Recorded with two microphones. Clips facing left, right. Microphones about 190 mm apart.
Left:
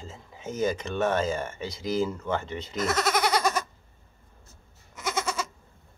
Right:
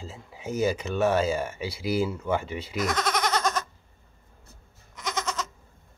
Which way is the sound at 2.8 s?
5° left (ahead or behind).